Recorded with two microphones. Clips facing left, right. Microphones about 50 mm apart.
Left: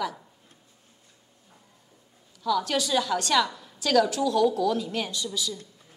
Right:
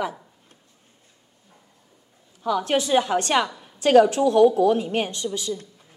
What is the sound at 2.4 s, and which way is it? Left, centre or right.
A woman's voice, right.